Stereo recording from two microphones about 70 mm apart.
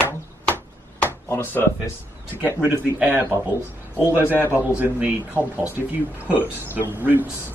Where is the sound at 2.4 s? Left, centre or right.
Centre.